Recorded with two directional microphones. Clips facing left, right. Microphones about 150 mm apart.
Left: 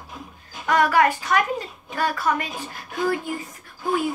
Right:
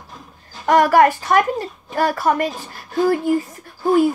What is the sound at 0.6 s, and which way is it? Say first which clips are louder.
A woman's voice: right 6 dB; 45° right (ahead or behind).